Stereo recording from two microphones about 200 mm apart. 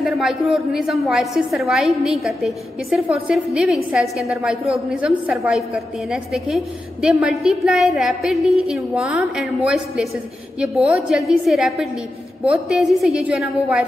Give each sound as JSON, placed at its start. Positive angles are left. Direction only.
{"t": 0.0, "sound": "a woman's voice", "side_deg": 0}
{"t": 10.9, "sound": "a woman's voice", "side_deg": 0}